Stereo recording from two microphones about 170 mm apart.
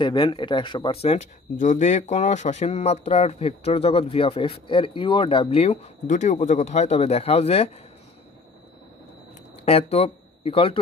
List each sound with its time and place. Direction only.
0.0 s speech: 30° left (ahead or behind)
9.7 s speech: 35° left (ahead or behind)